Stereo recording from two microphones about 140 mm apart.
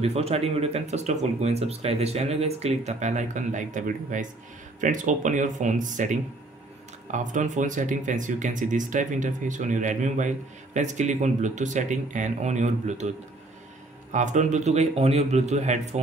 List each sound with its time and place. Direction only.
0.0 s speech: 50° right (ahead or behind)
14.1 s speech: 60° right (ahead or behind)